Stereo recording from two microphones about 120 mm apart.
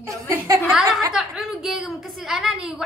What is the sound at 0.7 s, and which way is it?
A woman's voice, centre (ahead or behind).